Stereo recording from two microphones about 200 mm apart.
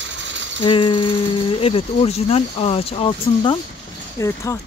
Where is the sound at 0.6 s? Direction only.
25° left (ahead or behind).